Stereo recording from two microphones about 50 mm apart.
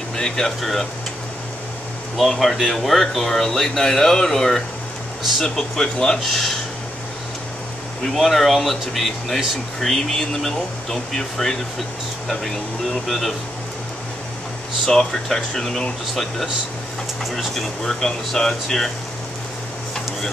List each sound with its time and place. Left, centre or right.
0.1 s speech: centre
2.1 s speech: centre
8.0 s speech: centre
12.9 s speech: centre
14.9 s speech: centre